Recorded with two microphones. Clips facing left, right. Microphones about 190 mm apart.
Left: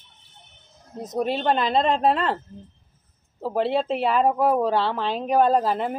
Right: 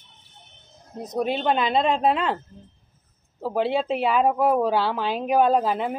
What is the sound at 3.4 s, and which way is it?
Speech, centre (ahead or behind).